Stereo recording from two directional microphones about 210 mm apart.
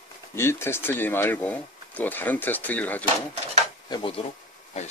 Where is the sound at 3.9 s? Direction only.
25° left (ahead or behind).